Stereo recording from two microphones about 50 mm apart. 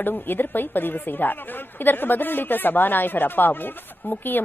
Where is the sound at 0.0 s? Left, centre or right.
Left.